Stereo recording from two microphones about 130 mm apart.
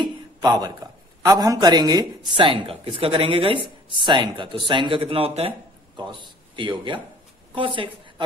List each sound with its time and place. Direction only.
0.0 s a man's voice: 35° right (ahead or behind); by 5.5 s 50° right (ahead or behind)
5.9 s a man's voice: 35° right (ahead or behind)